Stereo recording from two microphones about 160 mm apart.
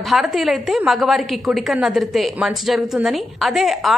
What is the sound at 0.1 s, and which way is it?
A woman's voice, centre (ahead or behind).